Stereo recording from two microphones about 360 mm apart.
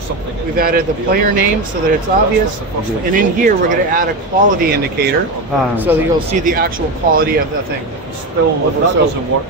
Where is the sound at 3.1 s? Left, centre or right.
Right.